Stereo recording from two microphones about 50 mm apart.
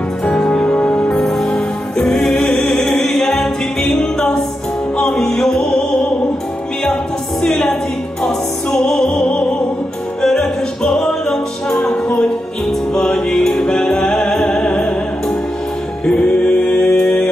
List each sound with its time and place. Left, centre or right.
0.2 s music: centre
1.2 s music: centre
7.4 s music: centre
10.2 s music: centre
11.7 s music: centre